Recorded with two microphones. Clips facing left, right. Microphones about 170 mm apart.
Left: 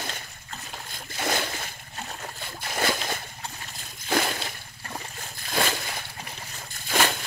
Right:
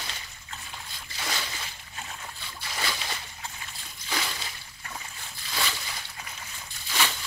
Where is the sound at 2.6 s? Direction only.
50° left (ahead or behind).